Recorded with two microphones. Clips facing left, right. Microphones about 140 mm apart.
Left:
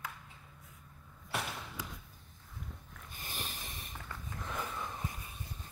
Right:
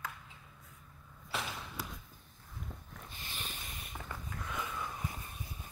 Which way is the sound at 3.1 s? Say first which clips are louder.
Left 3 dB; 45° left (ahead or behind).